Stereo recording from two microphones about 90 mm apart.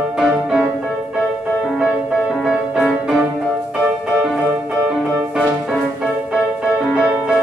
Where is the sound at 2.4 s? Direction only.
5° right (ahead or behind).